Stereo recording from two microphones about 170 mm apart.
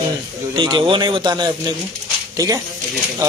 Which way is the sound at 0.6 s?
25° right (ahead or behind).